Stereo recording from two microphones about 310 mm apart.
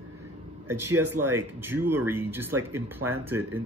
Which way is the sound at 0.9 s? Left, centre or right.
Right.